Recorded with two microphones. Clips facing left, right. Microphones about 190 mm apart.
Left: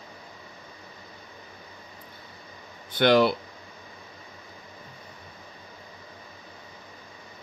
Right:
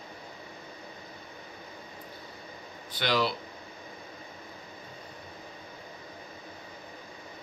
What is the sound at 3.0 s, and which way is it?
Speech, 55° left (ahead or behind).